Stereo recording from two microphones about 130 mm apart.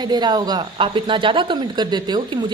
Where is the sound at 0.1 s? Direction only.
30° right (ahead or behind).